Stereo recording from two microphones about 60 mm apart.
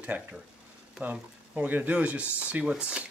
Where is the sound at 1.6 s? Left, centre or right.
Right.